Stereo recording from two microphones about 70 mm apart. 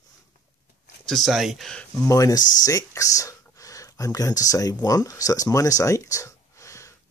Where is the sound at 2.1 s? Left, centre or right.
Left.